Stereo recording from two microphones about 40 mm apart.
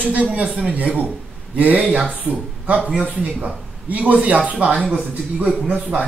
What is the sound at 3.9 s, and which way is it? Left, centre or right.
Speech, right.